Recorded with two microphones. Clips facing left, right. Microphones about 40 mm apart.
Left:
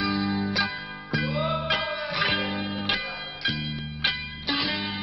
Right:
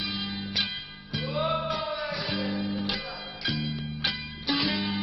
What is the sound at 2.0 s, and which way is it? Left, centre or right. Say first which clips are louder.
Music: left 5 dB; left.